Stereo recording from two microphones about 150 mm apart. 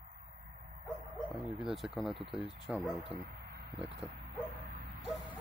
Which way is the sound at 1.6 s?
Centre (ahead or behind).